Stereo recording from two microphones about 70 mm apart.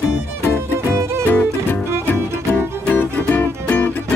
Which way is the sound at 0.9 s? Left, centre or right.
Right.